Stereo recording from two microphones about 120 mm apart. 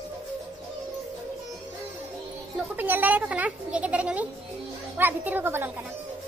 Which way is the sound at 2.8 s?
15° right (ahead or behind).